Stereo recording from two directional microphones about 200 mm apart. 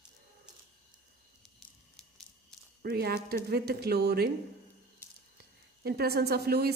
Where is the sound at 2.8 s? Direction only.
50° right (ahead or behind).